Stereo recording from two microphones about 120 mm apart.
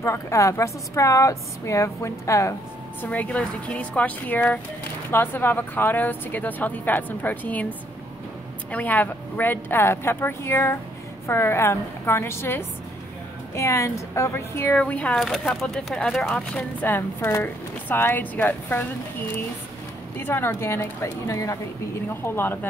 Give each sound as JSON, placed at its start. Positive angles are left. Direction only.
{"t": 0.0, "sound": "a woman's voice", "side_deg": 25}
{"t": 3.0, "sound": "speech", "side_deg": 10}
{"t": 8.7, "sound": "a woman's voice", "side_deg": 15}
{"t": 20.2, "sound": "a woman's voice", "side_deg": 20}